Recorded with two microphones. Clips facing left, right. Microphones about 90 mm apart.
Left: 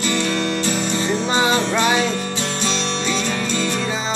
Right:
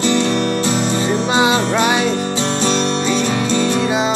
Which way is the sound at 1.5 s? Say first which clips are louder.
Right 2 dB; 30° right (ahead or behind).